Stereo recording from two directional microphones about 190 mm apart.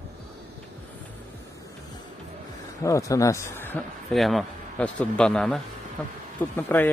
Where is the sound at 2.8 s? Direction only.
15° left (ahead or behind).